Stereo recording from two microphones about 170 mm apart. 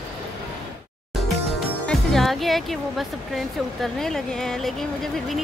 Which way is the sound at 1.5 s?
Centre (ahead or behind).